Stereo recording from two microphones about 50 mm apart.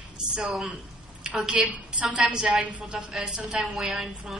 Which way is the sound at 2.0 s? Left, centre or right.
Right.